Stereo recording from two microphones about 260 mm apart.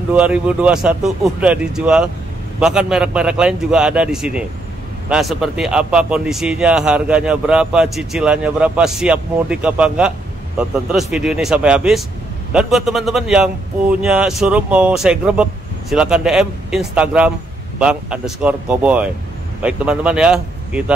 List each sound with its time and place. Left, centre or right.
0.1 s speech: centre